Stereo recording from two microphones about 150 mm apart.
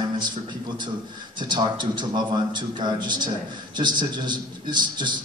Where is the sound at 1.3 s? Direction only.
30° right (ahead or behind).